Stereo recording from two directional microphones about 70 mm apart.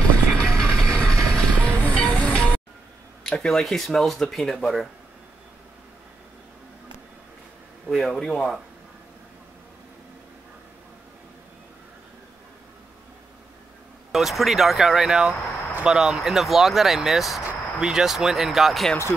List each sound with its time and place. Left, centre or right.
0.4 s music: centre
3.3 s speech: centre
7.9 s speech: centre
14.1 s speech: centre
17.4 s speech: centre